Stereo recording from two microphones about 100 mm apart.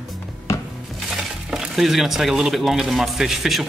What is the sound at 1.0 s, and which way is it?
Speech, 5° right (ahead or behind).